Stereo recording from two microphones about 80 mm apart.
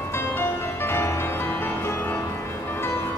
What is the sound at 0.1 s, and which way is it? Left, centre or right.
Music, left.